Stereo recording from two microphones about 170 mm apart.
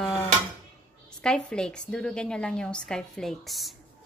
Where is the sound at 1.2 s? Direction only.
5° left (ahead or behind).